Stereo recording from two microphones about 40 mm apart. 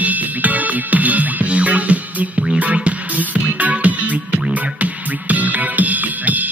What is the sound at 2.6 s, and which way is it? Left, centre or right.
Music, right.